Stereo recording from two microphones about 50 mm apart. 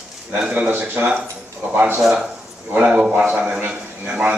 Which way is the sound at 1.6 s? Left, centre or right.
Right.